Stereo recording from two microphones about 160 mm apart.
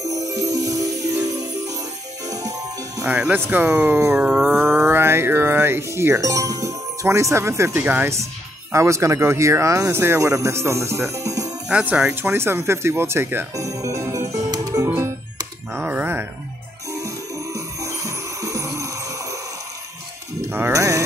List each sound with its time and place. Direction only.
0.1 s music: 20° right (ahead or behind)
2.2 s music: 20° right (ahead or behind)
3.1 s speech: 10° right (ahead or behind)
4.1 s mantra: 5° right (ahead or behind)
8.7 s speech: 20° right (ahead or behind)
11.7 s speech: 5° right (ahead or behind)
14.3 s music: 20° right (ahead or behind)
15.7 s a sound: 15° right (ahead or behind)
16.9 s music: 20° right (ahead or behind)
20.4 s sheep: 15° right (ahead or behind)